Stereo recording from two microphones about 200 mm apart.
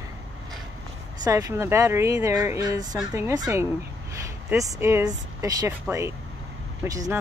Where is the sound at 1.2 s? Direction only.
15° right (ahead or behind).